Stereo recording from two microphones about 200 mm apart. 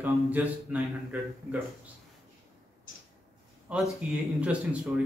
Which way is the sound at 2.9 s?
45° left (ahead or behind).